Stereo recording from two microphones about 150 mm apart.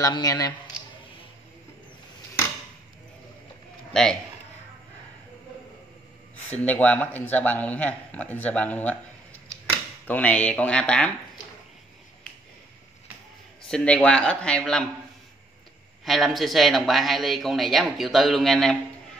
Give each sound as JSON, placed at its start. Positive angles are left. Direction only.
{"t": 0.0, "sound": "speech", "side_deg": 25}
{"t": 3.9, "sound": "speech", "side_deg": 5}
{"t": 6.6, "sound": "a man's voice", "side_deg": 10}
{"t": 10.0, "sound": "a man's voice", "side_deg": 10}
{"t": 13.7, "sound": "a man's voice", "side_deg": 5}
{"t": 16.1, "sound": "speech", "side_deg": 0}